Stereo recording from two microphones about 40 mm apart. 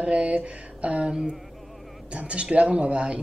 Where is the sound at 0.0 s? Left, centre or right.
Right.